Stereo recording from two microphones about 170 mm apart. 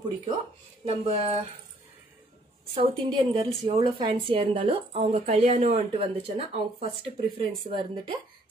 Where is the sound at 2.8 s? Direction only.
30° right (ahead or behind).